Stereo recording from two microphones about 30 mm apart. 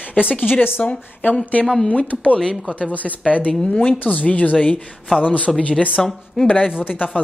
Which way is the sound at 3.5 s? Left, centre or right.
Left.